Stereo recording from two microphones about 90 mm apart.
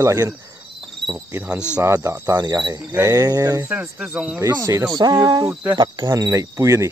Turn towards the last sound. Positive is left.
turn(degrees=-35)  # may be behind; listen again after turning